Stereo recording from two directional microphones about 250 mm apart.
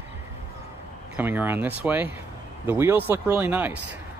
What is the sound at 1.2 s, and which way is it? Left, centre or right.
Speech, centre.